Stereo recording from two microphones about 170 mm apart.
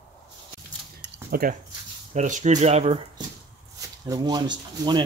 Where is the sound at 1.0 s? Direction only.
60° right (ahead or behind).